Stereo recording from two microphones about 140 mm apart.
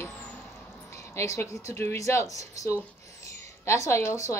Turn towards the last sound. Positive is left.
turn(degrees=20)  # may be behind; listen again after turning